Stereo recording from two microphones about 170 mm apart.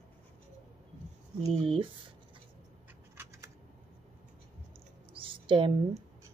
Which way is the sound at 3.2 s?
15° right (ahead or behind).